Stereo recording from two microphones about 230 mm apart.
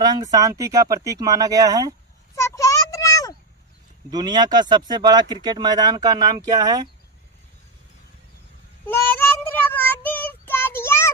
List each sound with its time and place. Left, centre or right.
0.0 s speech: centre
2.3 s a sound: centre
4.1 s speech: centre
9.5 s child singing: centre